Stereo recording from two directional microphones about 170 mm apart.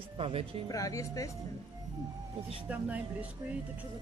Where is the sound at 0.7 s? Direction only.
20° left (ahead or behind).